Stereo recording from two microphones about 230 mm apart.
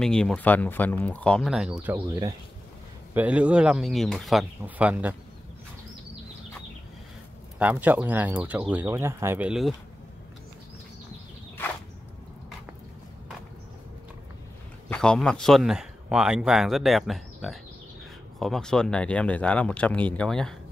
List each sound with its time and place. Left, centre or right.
0.0 s speech: centre
2.0 s speech: centre
3.2 s speech: centre
7.5 s speech: centre
14.9 s speech: centre